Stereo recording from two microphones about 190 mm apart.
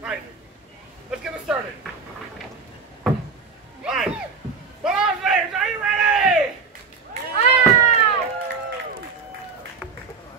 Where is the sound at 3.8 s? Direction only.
5° right (ahead or behind).